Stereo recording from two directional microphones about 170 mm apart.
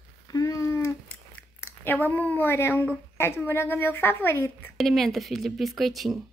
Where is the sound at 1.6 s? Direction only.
10° left (ahead or behind).